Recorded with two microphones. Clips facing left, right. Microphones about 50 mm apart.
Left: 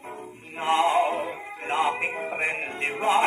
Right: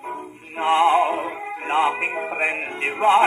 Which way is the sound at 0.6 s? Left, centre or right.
Right.